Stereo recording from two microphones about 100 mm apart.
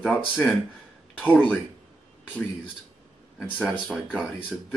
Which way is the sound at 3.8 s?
Centre (ahead or behind).